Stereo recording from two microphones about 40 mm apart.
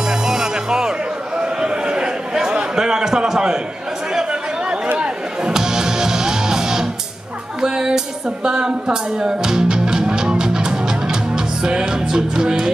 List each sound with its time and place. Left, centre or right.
0.3 s music: centre
1.4 s a sound: right
4.9 s music: right